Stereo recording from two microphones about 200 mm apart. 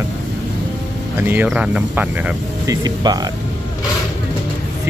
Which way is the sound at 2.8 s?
20° right (ahead or behind).